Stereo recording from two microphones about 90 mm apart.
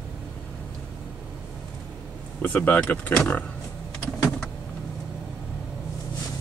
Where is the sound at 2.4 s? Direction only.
20° left (ahead or behind).